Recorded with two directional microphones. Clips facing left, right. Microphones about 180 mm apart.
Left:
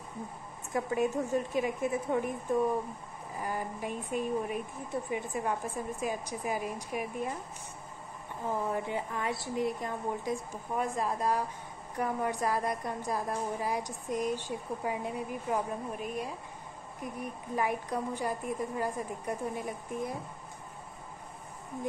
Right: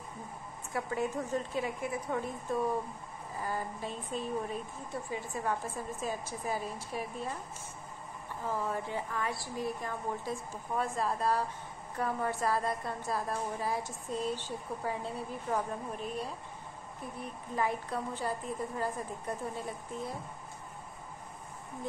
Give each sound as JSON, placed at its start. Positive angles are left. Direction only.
{"t": 0.7, "sound": "a woman's voice", "side_deg": 15}
{"t": 8.5, "sound": "a woman's voice", "side_deg": 20}